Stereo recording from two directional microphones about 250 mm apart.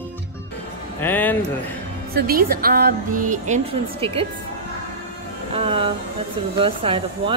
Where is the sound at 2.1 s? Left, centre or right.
Right.